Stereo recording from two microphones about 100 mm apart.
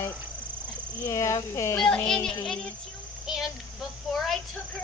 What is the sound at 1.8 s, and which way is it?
Speech, 5° left (ahead or behind).